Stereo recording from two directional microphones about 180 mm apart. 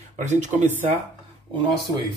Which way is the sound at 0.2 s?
40° right (ahead or behind).